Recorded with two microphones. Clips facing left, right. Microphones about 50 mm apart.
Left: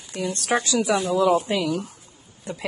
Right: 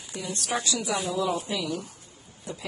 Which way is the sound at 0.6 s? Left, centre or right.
Left.